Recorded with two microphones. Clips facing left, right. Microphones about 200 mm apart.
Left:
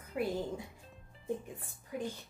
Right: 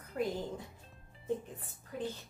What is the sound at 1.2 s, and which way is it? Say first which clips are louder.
Speech: right 1 dB; 10° left (ahead or behind).